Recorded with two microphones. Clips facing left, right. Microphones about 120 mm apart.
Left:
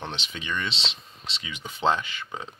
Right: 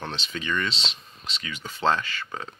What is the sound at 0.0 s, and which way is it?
Speech, 20° left (ahead or behind).